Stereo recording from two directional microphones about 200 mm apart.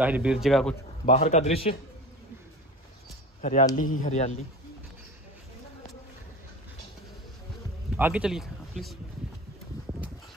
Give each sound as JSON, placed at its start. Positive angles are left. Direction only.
{"t": 0.0, "sound": "a man's voice", "side_deg": -5}
{"t": 1.0, "sound": "a man's voice", "side_deg": 30}
{"t": 3.3, "sound": "a man's voice", "side_deg": 35}
{"t": 7.9, "sound": "speech", "side_deg": -5}